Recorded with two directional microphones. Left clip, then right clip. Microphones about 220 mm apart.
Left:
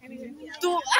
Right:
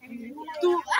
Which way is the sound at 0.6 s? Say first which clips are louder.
Right 1 dB; 40° left (ahead or behind).